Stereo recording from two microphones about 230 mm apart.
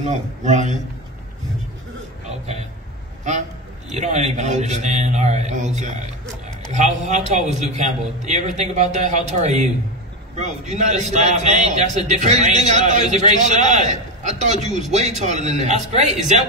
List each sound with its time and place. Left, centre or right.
0.0 s a man's voice: right
3.9 s a man's voice: right